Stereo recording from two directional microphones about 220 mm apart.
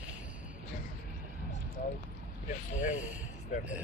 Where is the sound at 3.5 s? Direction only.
35° left (ahead or behind).